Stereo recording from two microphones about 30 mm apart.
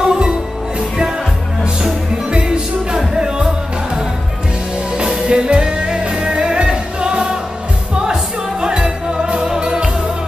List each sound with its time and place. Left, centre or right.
0.0 s music: right
2.3 s music: right
5.2 s music: right